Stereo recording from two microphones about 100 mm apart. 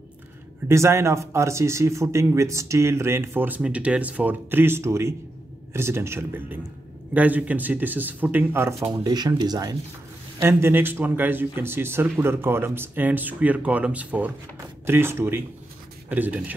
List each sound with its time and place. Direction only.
0.7 s speech: 30° right (ahead or behind)
9.0 s speech: 45° right (ahead or behind)
10.4 s speech: 25° right (ahead or behind)